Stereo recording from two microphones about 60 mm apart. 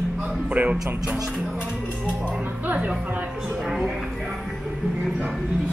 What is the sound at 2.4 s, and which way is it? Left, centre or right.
Music, right.